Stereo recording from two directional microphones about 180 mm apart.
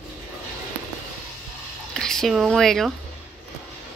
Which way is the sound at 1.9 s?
Centre (ahead or behind).